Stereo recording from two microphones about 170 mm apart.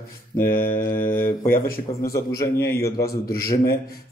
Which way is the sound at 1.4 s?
60° left (ahead or behind).